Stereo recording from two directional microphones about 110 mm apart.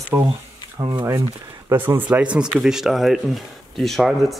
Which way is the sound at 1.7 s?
20° right (ahead or behind).